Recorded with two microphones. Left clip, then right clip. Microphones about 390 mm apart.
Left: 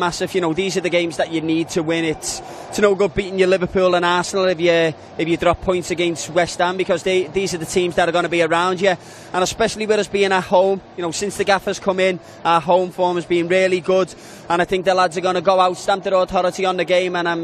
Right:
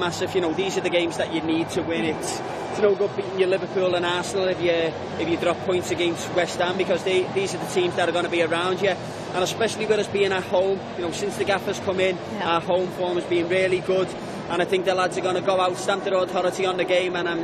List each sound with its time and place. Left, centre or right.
0.0 s a man's voice: left
3.3 s a man's voice: left